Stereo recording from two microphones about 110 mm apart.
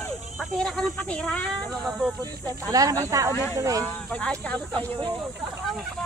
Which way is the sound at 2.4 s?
35° right (ahead or behind).